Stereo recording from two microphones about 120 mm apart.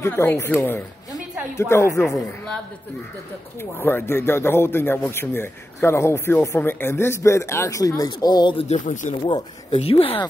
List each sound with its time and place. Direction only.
0.0 s a man's voice: 20° left (ahead or behind)
2.0 s a man's voice: 5° left (ahead or behind)
3.8 s a man's voice: 20° left (ahead or behind); by 8.5 s 35° left (ahead or behind)
8.5 s speech: 80° left
9.2 s speech: 45° left (ahead or behind)